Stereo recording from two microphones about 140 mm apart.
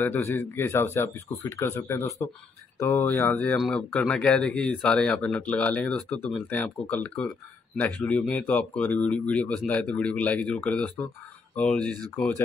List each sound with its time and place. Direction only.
0.0 s speech: 15° left (ahead or behind)